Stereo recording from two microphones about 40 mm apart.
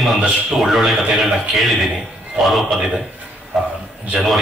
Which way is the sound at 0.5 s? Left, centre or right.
Centre.